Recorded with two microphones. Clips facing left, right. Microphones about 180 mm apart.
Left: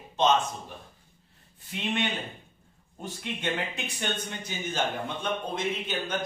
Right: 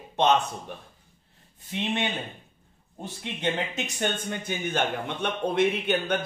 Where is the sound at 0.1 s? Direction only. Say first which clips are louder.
Right 2 dB; 60° right (ahead or behind).